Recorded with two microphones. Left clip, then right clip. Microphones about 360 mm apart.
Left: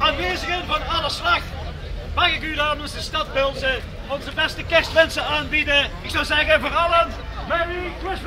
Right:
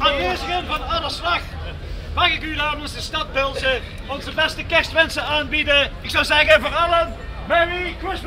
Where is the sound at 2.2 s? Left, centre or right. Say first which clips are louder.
Right 1 dB; centre.